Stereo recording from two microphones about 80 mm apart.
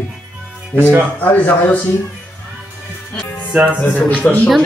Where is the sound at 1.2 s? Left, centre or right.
Left.